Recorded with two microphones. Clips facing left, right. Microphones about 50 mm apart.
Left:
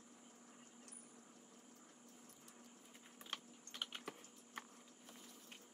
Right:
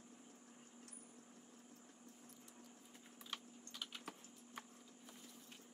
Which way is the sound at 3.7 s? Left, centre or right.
Left.